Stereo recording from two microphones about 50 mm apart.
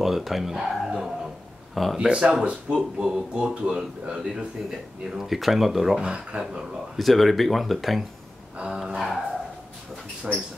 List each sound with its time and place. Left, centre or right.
0.0 s speech: centre
2.0 s a man's voice: centre
3.5 s a man's voice: centre
5.9 s a man's voice: centre
7.0 s speech: centre
8.6 s a man's voice: centre
10.3 s a man's voice: centre